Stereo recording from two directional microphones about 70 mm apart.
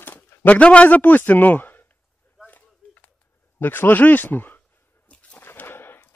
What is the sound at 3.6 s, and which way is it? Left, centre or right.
A man's voice, left.